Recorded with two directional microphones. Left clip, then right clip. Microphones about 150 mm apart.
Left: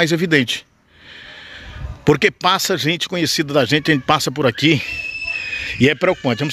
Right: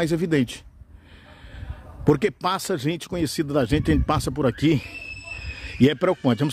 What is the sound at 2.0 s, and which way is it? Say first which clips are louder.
Speech: left 7 dB; 10° right (ahead or behind).